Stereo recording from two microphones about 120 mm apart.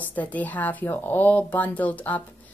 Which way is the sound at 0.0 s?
15° left (ahead or behind).